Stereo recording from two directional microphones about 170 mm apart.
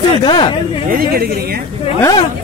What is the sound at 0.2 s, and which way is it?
Speech, 25° left (ahead or behind).